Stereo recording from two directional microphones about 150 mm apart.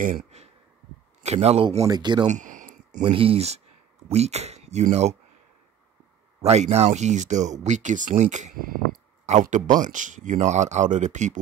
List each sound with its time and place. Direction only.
0.0 s a sound: 50° right (ahead or behind)
1.2 s speech: 45° right (ahead or behind)
1.9 s speech: 30° right (ahead or behind)
2.2 s a sound: 55° right (ahead or behind)
3.0 s speech: 35° right (ahead or behind)
6.4 s speech: 45° right (ahead or behind)